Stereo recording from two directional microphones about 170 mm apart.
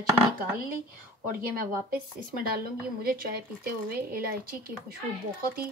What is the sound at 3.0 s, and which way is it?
A woman's voice, 60° right (ahead or behind).